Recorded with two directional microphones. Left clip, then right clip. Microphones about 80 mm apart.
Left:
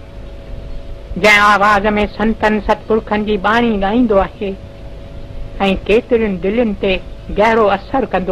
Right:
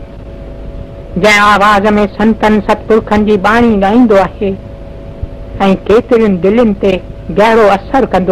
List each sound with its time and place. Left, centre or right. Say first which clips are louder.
1.2 s a man's voice: right 3 dB; left
1.7 s a man's voice: right 4 dB; left
2.4 s a woman's voice: right 3 dB; left
3.5 s a man's voice: right 6 dB; left
4.2 s a woman's voice: right 5 dB; left
5.6 s a woman's voice: right 5 dB; left